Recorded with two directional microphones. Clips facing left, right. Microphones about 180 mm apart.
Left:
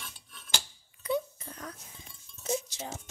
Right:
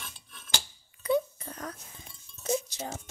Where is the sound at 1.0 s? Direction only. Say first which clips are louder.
Right 4 dB; 50° right (ahead or behind).